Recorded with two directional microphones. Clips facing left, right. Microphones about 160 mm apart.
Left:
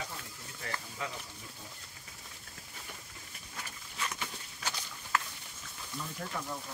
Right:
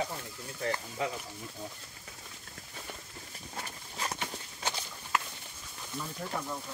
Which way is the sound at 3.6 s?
35° right (ahead or behind).